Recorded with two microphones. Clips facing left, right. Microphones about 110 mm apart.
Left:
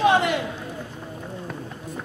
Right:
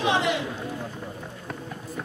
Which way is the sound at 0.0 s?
50° left (ahead or behind).